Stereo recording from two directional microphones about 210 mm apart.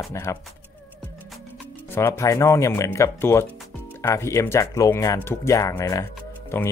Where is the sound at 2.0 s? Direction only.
15° left (ahead or behind).